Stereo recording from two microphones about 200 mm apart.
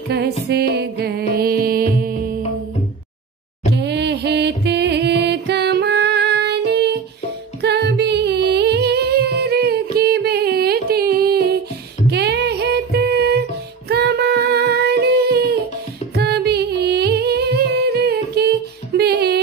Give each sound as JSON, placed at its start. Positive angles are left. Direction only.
{"t": 0.5, "sound": "music", "side_deg": -55}
{"t": 3.7, "sound": "music", "side_deg": -60}
{"t": 12.1, "sound": "female singing", "side_deg": -55}
{"t": 16.2, "sound": "music", "side_deg": -55}